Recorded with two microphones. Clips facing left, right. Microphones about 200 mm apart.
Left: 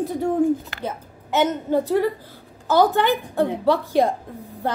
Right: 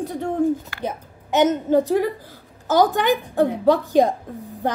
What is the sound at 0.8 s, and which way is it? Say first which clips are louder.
A woman's voice: right 2 dB; 15° right (ahead or behind).